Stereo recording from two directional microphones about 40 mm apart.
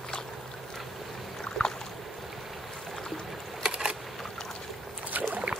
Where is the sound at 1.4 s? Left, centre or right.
Centre.